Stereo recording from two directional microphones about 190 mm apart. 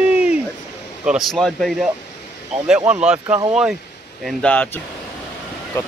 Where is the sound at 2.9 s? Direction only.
5° right (ahead or behind).